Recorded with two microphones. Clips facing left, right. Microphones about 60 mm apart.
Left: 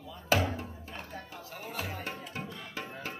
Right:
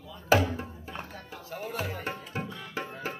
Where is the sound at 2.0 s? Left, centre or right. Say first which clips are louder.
Right 4 dB; centre.